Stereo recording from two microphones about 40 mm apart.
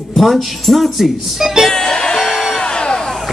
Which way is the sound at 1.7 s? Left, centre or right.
Centre.